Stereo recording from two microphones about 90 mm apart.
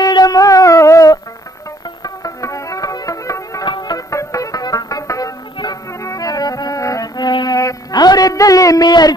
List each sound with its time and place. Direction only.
0.0 s music: 45° left (ahead or behind)
3.6 s music: 55° left (ahead or behind)
4.1 s music: 35° left (ahead or behind)